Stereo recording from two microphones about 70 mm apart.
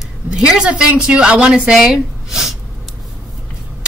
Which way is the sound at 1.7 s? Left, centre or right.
Centre.